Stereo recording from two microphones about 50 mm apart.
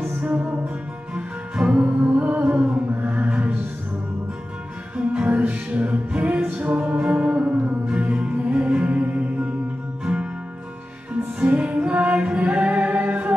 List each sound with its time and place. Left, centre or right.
0.2 s music: right
4.9 s music: right
11.3 s music: right